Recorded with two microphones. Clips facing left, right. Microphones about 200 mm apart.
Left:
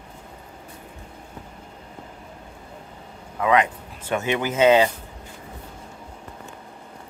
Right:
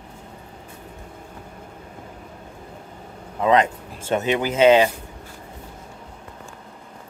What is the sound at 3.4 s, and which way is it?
Speech, 25° right (ahead or behind).